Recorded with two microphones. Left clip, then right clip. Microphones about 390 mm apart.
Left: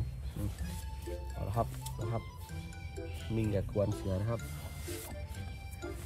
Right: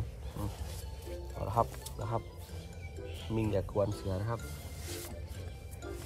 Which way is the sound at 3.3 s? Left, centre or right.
Centre.